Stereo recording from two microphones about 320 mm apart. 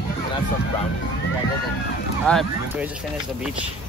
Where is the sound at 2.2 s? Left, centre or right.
Centre.